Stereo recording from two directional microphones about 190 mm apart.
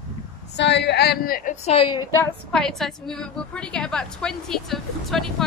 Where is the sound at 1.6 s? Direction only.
30° left (ahead or behind).